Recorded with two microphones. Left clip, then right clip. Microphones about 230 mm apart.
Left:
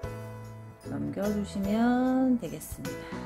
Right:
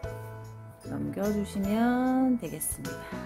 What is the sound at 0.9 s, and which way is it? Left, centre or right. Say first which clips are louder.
Speech: right 1 dB; centre.